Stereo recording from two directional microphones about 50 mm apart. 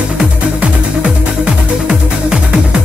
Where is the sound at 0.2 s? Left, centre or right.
Right.